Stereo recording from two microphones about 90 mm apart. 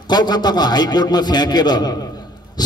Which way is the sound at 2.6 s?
50° left (ahead or behind).